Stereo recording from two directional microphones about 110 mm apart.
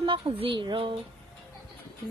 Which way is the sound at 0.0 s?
50° right (ahead or behind).